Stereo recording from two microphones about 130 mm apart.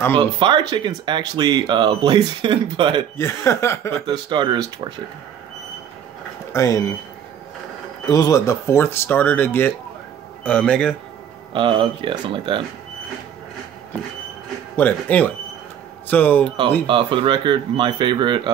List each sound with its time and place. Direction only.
0.1 s speech: 40° right (ahead or behind)
3.2 s speech: 20° left (ahead or behind)
4.0 s speech: 35° right (ahead or behind)
6.5 s speech: 25° left (ahead or behind)
8.1 s speech: 25° left (ahead or behind); by 11.0 s 10° left (ahead or behind)
11.5 s speech: 40° right (ahead or behind)
14.8 s speech: 15° left (ahead or behind)
16.8 s speech: 40° right (ahead or behind)